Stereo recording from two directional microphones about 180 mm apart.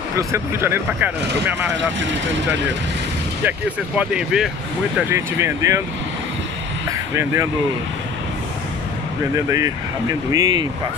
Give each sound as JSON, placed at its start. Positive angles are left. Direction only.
{"t": 0.1, "sound": "speech", "side_deg": -15}
{"t": 3.4, "sound": "speech", "side_deg": -5}
{"t": 4.9, "sound": "speech", "side_deg": -15}
{"t": 6.9, "sound": "speech", "side_deg": -15}
{"t": 9.5, "sound": "speech", "side_deg": -20}